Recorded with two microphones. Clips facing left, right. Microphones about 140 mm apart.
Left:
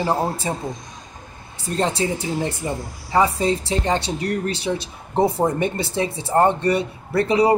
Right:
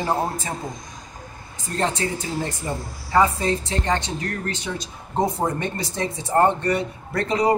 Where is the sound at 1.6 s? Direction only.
20° left (ahead or behind).